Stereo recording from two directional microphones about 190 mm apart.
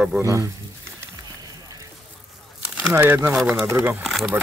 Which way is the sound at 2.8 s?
10° right (ahead or behind).